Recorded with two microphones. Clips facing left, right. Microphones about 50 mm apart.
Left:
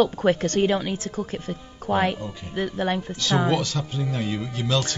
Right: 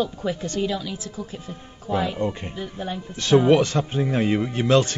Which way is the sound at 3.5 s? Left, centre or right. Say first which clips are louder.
Right 6 dB; right.